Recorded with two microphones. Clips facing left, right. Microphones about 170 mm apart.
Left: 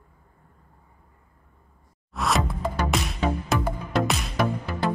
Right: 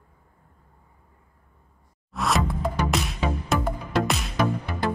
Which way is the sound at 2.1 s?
Centre (ahead or behind).